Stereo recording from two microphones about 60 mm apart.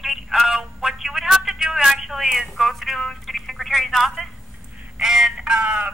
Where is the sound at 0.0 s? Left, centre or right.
Centre.